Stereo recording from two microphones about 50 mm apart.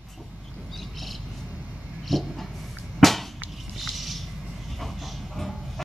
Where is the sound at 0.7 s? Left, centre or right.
Centre.